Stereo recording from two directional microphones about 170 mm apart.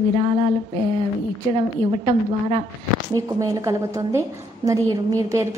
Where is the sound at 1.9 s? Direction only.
30° right (ahead or behind).